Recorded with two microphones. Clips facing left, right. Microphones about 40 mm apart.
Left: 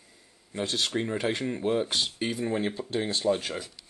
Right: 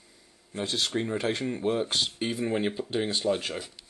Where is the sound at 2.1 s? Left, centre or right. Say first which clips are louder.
Even; centre.